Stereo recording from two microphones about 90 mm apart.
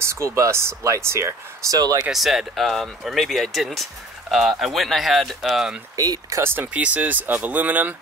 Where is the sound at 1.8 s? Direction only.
45° right (ahead or behind).